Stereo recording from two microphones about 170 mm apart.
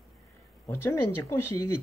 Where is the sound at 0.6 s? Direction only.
15° left (ahead or behind).